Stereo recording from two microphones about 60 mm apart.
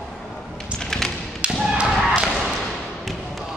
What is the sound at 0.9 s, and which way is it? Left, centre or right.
Tap, centre.